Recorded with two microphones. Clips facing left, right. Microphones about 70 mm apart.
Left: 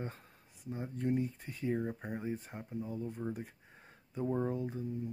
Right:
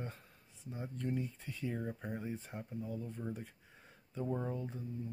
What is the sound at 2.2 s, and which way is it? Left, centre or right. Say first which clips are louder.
Speech: left 3 dB; centre.